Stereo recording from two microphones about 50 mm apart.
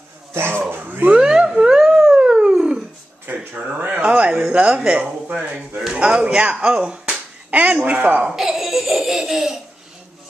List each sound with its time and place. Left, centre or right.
0.3 s dog: right
1.1 s a sound: centre
2.1 s dog: centre
3.3 s a sound: right
4.5 s speech: right
8.3 s a child's voice: centre